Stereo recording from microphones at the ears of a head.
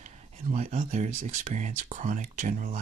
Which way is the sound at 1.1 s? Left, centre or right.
Right.